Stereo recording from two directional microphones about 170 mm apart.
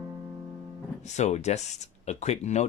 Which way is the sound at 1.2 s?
40° left (ahead or behind).